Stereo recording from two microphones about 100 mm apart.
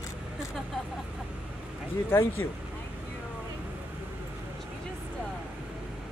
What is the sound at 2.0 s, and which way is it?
Speech, 25° left (ahead or behind).